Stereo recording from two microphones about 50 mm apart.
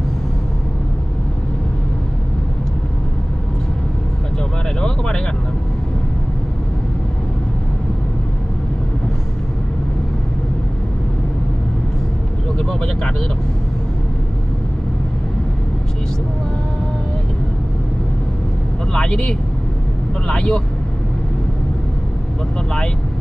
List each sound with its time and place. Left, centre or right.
4.7 s a sound: centre
12.5 s vehicle: centre
18.9 s vehicle: centre